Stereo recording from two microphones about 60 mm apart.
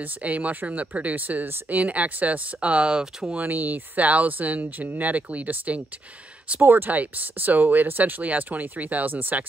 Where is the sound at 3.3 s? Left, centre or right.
Right.